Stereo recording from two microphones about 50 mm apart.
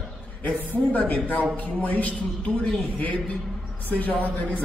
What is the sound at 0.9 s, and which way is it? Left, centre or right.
Speech, left.